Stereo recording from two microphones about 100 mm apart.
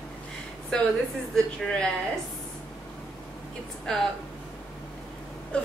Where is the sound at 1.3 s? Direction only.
10° left (ahead or behind).